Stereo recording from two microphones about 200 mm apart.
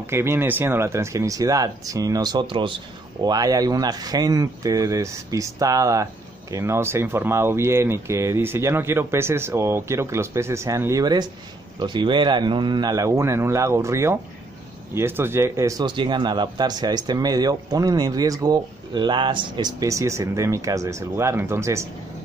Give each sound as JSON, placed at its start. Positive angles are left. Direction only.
{"t": 0.0, "sound": "speech", "side_deg": -10}